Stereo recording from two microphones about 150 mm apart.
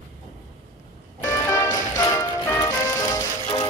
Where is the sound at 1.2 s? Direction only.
20° left (ahead or behind).